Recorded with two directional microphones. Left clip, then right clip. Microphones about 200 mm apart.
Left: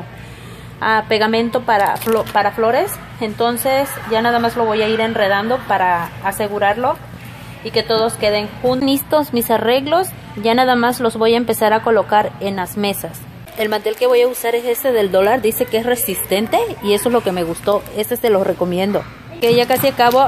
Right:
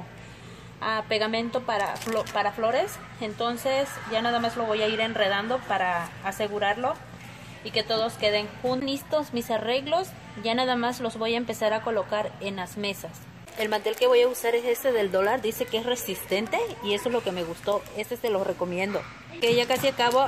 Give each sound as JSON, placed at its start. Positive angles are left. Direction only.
{"t": 0.7, "sound": "a woman's voice", "side_deg": 35}
{"t": 13.6, "sound": "speech", "side_deg": 20}
{"t": 19.4, "sound": "a woman's voice", "side_deg": 15}